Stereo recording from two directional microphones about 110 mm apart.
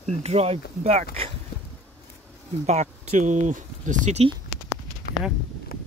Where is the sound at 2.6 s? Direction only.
90° right.